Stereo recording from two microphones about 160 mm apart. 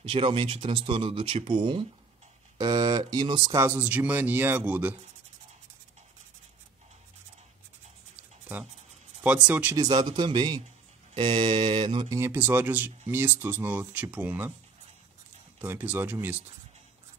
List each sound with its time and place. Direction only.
0.0 s speech: 35° right (ahead or behind)
3.5 s speech: 15° right (ahead or behind)
9.2 s speech: 10° right (ahead or behind)
9.8 s speech: 25° right (ahead or behind)
12.2 s speech: 10° right (ahead or behind)
15.6 s speech: 10° right (ahead or behind)